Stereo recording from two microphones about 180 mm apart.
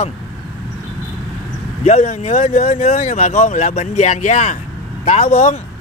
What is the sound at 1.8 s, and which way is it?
Speech, 35° left (ahead or behind).